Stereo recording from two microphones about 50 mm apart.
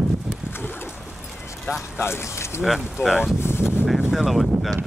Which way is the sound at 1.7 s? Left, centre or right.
Left.